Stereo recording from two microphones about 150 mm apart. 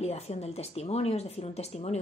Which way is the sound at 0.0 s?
45° left (ahead or behind).